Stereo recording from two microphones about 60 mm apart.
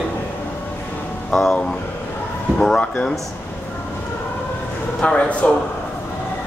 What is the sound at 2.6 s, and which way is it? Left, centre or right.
Speech, centre.